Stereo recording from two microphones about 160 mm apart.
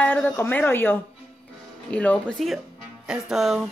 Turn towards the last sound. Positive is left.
turn(degrees=0)  # may be behind; listen again after turning